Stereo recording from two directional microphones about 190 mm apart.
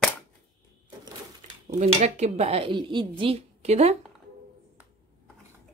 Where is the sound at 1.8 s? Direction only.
35° right (ahead or behind).